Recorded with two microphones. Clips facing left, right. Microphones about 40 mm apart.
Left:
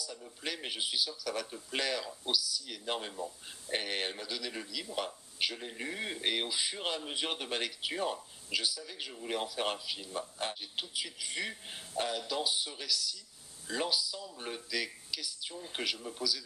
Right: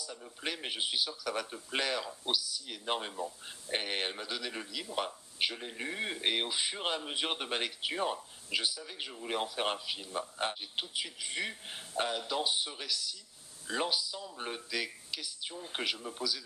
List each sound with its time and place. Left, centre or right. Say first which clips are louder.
0.0 s a man's voice: right 1 dB; centre